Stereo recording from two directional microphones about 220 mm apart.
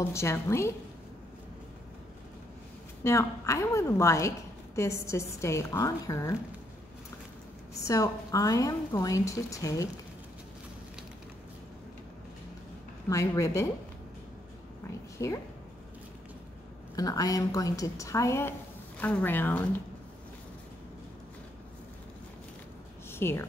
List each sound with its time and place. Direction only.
0.1 s a woman's voice: 10° left (ahead or behind)
3.0 s a woman's voice: 15° left (ahead or behind)
7.8 s a woman's voice: 15° left (ahead or behind)
13.1 s a woman's voice: 15° left (ahead or behind)
15.1 s speech: 15° left (ahead or behind)
16.9 s a woman's voice: 15° left (ahead or behind)
23.1 s a woman's voice: 10° left (ahead or behind)